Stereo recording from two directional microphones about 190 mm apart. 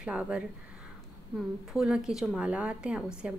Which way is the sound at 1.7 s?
Centre (ahead or behind).